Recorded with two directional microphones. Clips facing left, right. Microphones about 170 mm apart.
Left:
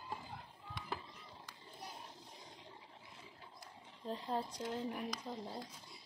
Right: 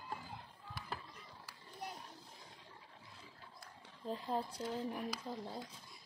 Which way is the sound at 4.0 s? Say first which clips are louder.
Right 1 dB; 5° right (ahead or behind).